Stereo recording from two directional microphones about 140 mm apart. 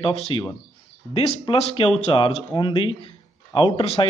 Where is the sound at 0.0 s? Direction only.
40° left (ahead or behind).